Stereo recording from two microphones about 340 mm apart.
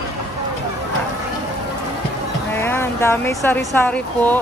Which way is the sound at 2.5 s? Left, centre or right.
Centre.